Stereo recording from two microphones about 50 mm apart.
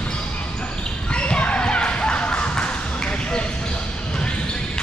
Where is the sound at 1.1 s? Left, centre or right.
Left.